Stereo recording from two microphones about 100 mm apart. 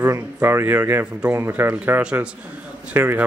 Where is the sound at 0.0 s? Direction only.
20° right (ahead or behind).